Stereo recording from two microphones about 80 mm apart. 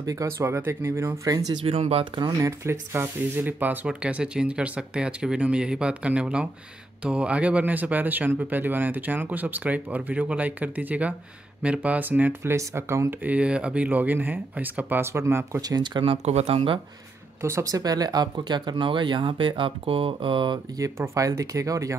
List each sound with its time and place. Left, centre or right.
0.0 s speech: right
13.2 s speech: centre; by 15.6 s right
15.6 s speech: right
17.4 s speech: right
17.7 s speech: right
20.7 s speech: right